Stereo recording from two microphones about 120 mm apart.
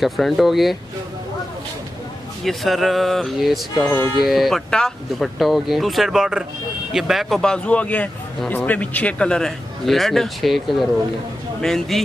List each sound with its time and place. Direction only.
0.0 s a man's voice: centre (ahead or behind)
2.4 s a man's voice: centre (ahead or behind)
3.7 s music: 20° left (ahead or behind)
4.2 s a man's voice: centre (ahead or behind)